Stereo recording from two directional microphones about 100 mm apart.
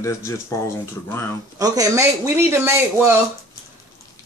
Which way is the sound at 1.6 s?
40° right (ahead or behind).